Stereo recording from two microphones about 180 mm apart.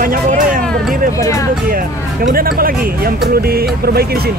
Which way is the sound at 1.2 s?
15° left (ahead or behind).